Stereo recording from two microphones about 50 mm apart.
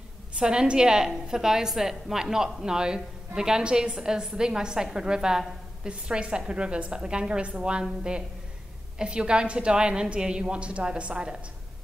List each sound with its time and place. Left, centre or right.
0.4 s a woman's voice: centre
8.9 s a woman's voice: right